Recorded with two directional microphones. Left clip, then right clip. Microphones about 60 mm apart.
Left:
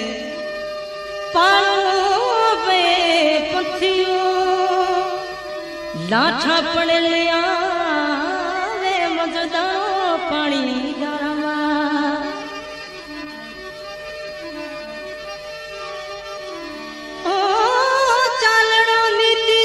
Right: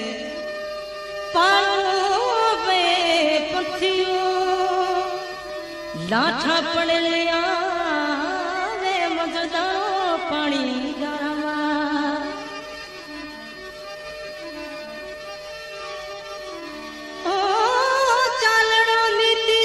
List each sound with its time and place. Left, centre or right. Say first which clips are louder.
0.0 s music: left 3 dB; left
17.2 s music: left 3 dB; left